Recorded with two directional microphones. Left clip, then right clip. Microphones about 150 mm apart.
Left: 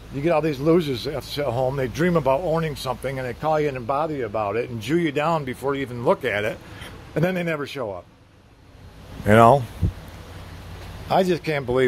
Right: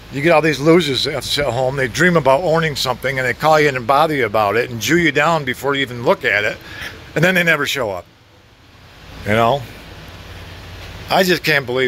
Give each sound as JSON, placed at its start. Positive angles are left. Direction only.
{"t": 0.1, "sound": "speech", "side_deg": 5}
{"t": 7.2, "sound": "speech", "side_deg": 5}
{"t": 9.3, "sound": "speech", "side_deg": 30}
{"t": 11.1, "sound": "a man's voice", "side_deg": 10}